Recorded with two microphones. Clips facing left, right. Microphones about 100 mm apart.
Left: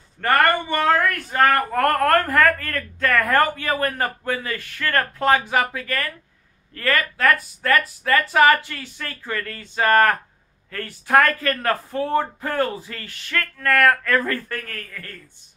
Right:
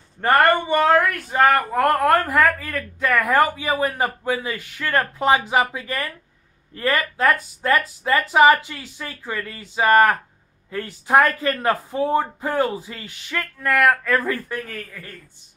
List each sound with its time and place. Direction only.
0.2 s speech: 20° right (ahead or behind)